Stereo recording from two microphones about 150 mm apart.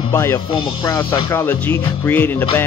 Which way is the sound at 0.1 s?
15° left (ahead or behind).